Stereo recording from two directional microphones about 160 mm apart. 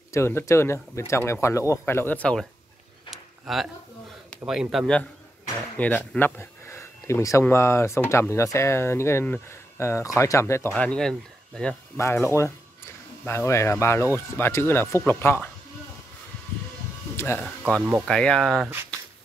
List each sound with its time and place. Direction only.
0.1 s speech: 15° left (ahead or behind)
3.1 s a sound: centre (ahead or behind)
4.5 s speech: 5° right (ahead or behind); by 10.7 s 15° left (ahead or behind)
10.7 s speech: 5° left (ahead or behind)
12.0 s speech: 15° left (ahead or behind)
17.2 s speech: 10° left (ahead or behind)